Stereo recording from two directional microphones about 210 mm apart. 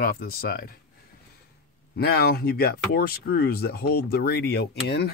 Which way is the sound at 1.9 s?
50° left (ahead or behind).